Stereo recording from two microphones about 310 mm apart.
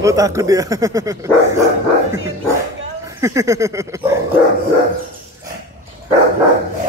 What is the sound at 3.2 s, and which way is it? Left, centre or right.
Speech, centre.